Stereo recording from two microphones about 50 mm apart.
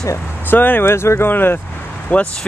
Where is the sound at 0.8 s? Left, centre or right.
Left.